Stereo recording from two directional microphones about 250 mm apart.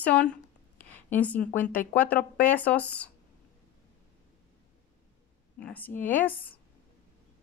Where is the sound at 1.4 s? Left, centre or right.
Left.